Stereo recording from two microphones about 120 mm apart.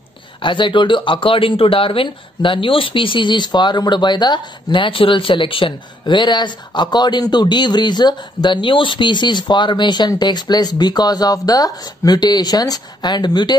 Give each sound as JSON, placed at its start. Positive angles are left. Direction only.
{"t": 0.4, "sound": "speech", "side_deg": 45}